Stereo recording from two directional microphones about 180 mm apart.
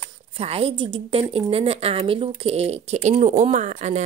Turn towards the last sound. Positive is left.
turn(degrees=-40)  # may be behind; listen again after turning